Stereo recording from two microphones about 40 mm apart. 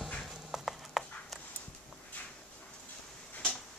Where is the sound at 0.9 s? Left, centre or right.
Centre.